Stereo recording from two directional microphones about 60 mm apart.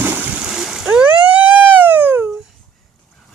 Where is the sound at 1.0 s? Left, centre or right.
Right.